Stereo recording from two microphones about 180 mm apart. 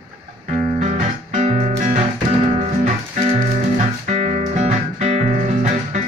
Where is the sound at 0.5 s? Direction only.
40° right (ahead or behind).